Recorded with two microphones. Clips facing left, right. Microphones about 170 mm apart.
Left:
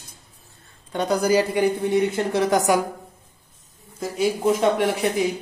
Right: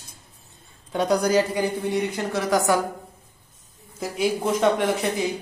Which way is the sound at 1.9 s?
20° left (ahead or behind).